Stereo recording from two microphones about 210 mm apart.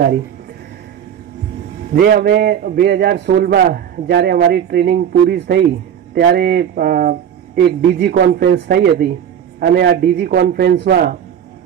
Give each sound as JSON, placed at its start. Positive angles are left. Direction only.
{"t": 2.0, "sound": "a man's voice", "side_deg": -50}